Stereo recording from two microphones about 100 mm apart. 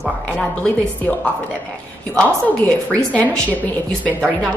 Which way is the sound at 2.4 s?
15° left (ahead or behind).